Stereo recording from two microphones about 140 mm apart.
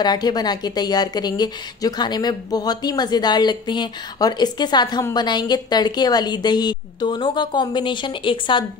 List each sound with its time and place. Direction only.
0.0 s a woman's voice: 30° left (ahead or behind)